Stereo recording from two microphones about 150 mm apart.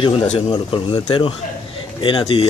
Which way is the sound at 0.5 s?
35° left (ahead or behind).